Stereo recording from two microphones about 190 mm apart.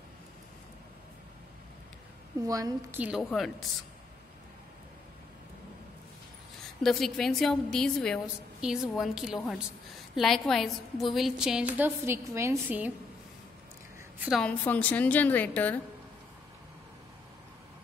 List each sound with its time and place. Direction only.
2.4 s a woman's voice: 20° right (ahead or behind)
3.0 s a woman's voice: 5° right (ahead or behind)
6.8 s a woman's voice: centre (ahead or behind)
14.2 s a woman's voice: centre (ahead or behind)